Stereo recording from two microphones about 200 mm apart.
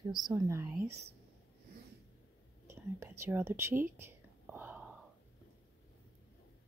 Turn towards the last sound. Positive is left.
turn(degrees=-10)  # may be behind; listen again after turning